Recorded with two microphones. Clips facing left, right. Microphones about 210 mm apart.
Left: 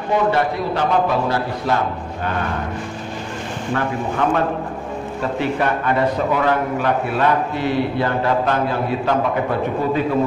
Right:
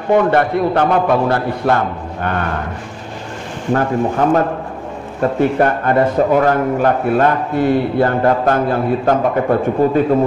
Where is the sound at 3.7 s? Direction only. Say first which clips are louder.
Right 7 dB; 40° right (ahead or behind).